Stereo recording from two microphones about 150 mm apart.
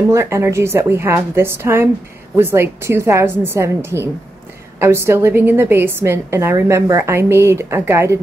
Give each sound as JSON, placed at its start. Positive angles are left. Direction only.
{"t": 0.1, "sound": "a woman's voice", "side_deg": -20}